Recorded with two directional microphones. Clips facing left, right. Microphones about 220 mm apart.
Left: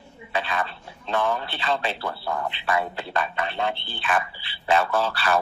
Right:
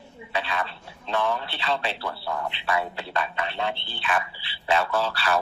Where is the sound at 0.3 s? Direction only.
45° left (ahead or behind).